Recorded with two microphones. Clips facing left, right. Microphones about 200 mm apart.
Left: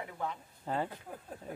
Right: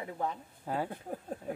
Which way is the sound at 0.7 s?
10° right (ahead or behind).